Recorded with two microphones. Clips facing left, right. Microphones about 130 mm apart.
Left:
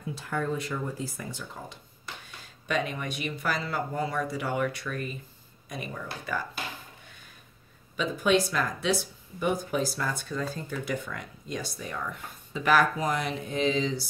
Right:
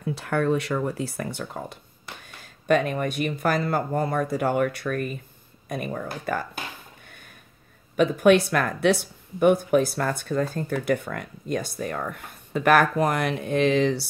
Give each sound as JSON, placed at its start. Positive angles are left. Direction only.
{"t": 0.0, "sound": "speech", "side_deg": -70}
{"t": 7.9, "sound": "speech", "side_deg": -55}